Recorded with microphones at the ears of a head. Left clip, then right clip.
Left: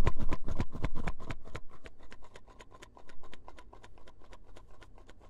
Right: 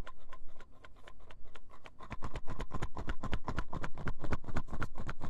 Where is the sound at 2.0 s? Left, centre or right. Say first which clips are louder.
Right 8 dB; right.